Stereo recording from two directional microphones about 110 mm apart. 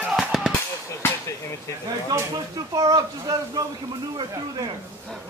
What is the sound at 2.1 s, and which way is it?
Speech, 30° right (ahead or behind).